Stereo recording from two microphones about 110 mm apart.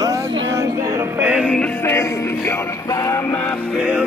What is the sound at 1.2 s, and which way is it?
Music, 10° right (ahead or behind).